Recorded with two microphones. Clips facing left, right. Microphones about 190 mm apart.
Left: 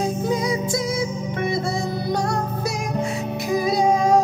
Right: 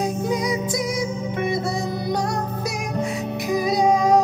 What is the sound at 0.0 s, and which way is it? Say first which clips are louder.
Music: left 1 dB; 15° right (ahead or behind).